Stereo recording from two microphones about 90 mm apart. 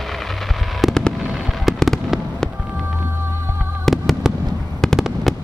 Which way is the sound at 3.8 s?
5° left (ahead or behind).